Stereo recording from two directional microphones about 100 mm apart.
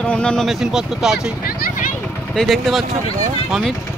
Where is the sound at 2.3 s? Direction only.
Centre (ahead or behind).